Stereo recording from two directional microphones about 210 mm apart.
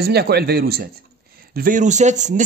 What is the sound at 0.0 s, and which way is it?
Speech, 50° right (ahead or behind).